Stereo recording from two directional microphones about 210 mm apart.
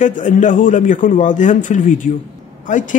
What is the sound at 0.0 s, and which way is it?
Speech, 35° left (ahead or behind).